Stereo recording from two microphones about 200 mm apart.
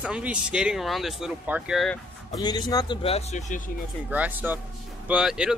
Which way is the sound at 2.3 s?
20° left (ahead or behind).